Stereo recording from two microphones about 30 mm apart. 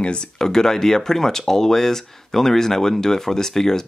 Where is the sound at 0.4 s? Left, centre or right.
Centre.